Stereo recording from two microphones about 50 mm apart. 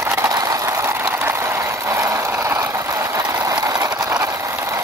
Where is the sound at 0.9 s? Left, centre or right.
Right.